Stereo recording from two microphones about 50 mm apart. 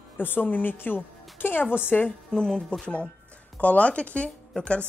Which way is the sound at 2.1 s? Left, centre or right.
Centre.